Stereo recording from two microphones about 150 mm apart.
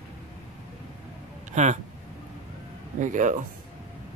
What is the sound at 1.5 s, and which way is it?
Speech, 50° right (ahead or behind).